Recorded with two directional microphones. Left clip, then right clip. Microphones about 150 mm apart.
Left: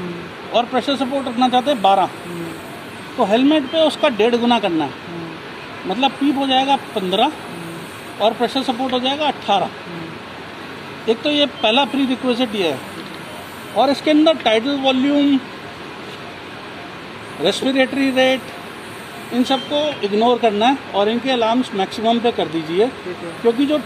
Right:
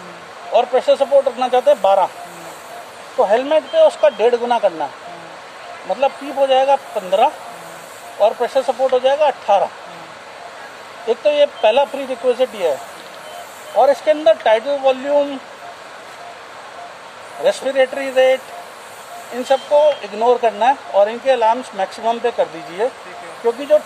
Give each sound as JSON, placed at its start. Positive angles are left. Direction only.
{"t": 0.5, "sound": "speech", "side_deg": -60}
{"t": 3.2, "sound": "speech", "side_deg": -45}
{"t": 5.9, "sound": "speech", "side_deg": -50}
{"t": 11.1, "sound": "speech", "side_deg": -50}
{"t": 13.7, "sound": "speech", "side_deg": -45}
{"t": 17.4, "sound": "speech", "side_deg": -50}
{"t": 20.2, "sound": "speech", "side_deg": -50}